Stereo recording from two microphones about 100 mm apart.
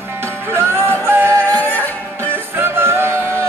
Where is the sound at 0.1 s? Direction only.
25° right (ahead or behind).